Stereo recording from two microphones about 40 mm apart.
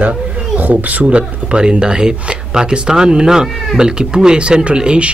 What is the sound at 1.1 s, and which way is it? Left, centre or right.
Speech, right.